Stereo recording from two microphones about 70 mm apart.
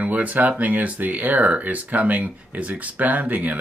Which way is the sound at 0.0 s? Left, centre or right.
Right.